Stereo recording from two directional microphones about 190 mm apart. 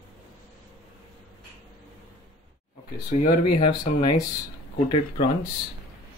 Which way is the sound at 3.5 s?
25° left (ahead or behind).